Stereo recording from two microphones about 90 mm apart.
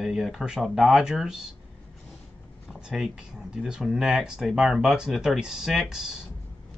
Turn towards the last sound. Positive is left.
turn(degrees=-5)  # may be behind; listen again after turning